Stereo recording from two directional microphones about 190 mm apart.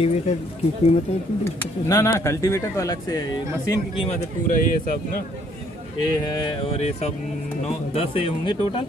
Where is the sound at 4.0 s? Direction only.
35° left (ahead or behind).